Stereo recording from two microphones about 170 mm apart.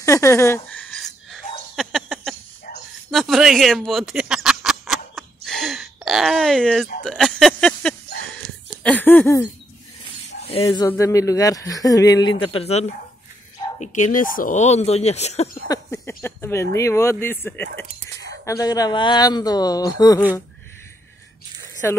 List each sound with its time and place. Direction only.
0.0 s a sound: 15° left (ahead or behind)
10.6 s a man's voice: 25° left (ahead or behind); by 15.4 s 40° left (ahead or behind)
16.1 s a man's voice: 10° left (ahead or behind)
21.8 s speech: 15° left (ahead or behind)